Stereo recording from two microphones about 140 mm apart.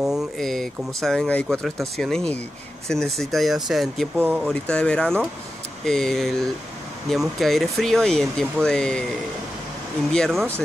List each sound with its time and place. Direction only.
0.0 s speech: centre (ahead or behind)
10.1 s speech: 5° left (ahead or behind)